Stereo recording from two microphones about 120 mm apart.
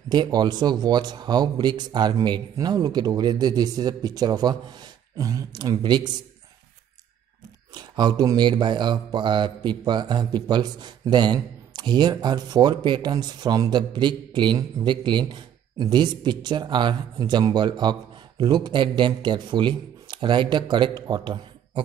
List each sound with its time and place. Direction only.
0.1 s speech: 35° right (ahead or behind)
7.7 s speech: 35° right (ahead or behind)